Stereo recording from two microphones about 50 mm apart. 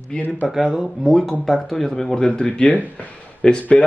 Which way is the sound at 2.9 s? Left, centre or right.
Left.